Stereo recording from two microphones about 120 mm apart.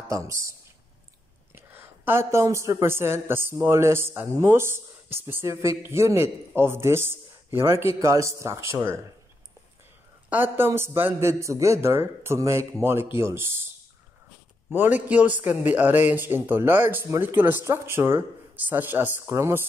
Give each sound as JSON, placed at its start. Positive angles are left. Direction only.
{"t": 0.1, "sound": "a man's voice", "side_deg": -25}
{"t": 10.3, "sound": "a man's voice", "side_deg": -15}
{"t": 14.7, "sound": "a man's voice", "side_deg": -15}